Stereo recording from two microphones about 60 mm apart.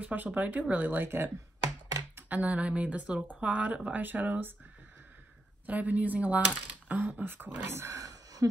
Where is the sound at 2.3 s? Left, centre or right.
Right.